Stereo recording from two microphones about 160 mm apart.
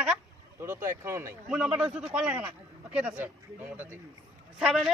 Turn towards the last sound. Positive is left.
turn(degrees=-5)  # may be behind; listen again after turning